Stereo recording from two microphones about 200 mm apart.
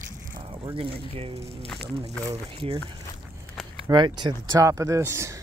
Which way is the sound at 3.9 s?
20° right (ahead or behind).